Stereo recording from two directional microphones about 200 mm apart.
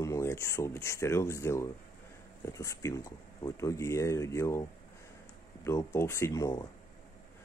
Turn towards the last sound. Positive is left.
turn(degrees=15)  # may be behind; listen again after turning